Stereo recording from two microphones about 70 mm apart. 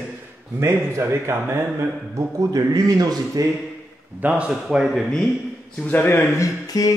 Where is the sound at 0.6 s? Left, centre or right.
Right.